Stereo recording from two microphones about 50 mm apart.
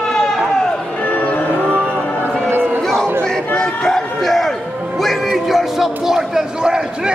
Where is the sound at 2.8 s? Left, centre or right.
Centre.